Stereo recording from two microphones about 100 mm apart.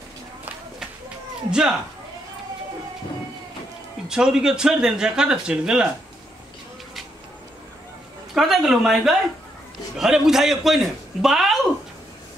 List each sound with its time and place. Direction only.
1.5 s speech: 5° right (ahead or behind)
4.1 s speech: 5° right (ahead or behind)
8.4 s a man's voice: centre (ahead or behind)